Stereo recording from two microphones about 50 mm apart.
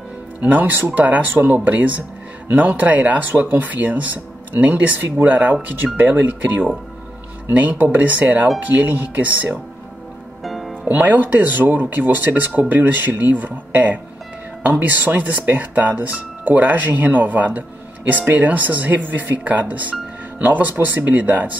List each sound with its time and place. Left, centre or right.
0.4 s speech: right
8.1 s speech: right
10.4 s music: centre
10.9 s speech: right